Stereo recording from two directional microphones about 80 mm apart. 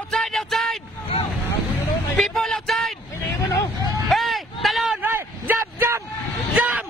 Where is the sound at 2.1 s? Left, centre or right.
Centre.